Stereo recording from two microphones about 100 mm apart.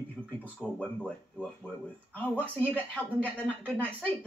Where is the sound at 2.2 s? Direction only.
15° left (ahead or behind).